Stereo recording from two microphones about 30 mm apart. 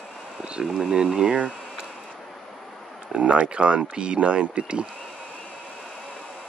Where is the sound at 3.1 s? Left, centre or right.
Right.